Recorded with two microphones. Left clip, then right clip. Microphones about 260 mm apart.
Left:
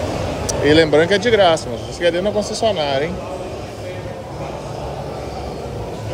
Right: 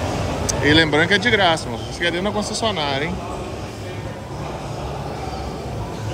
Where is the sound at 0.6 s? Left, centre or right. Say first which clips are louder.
Left 3 dB; centre.